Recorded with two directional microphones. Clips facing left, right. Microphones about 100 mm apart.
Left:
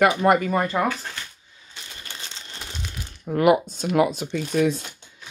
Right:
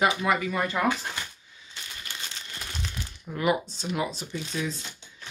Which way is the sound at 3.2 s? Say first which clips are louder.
Left 8 dB; 50° left (ahead or behind).